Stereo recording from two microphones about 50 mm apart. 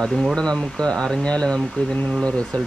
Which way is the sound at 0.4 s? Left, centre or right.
Centre.